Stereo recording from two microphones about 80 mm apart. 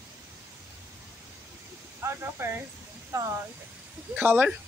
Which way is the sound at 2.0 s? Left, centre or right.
Right.